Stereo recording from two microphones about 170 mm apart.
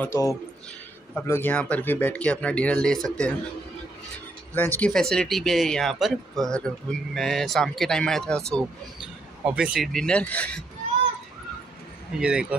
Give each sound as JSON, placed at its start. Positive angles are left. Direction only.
{"t": 0.0, "sound": "speech", "side_deg": 15}
{"t": 4.6, "sound": "speech", "side_deg": 10}
{"t": 12.2, "sound": "speech", "side_deg": -5}